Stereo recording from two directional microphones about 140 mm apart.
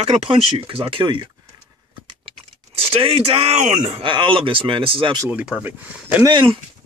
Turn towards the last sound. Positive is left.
turn(degrees=-35)  # may be behind; listen again after turning